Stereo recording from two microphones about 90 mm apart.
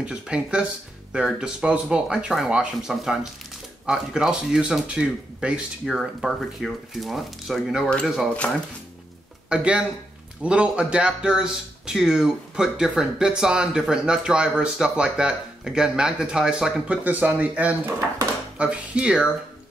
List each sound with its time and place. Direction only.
0.0 s speech: 10° right (ahead or behind)
9.5 s speech: 10° right (ahead or behind)